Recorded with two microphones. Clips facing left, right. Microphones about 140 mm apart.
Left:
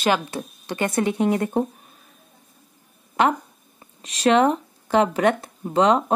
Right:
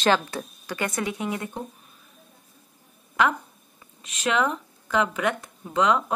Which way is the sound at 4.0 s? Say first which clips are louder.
Left 7 dB; 35° left (ahead or behind).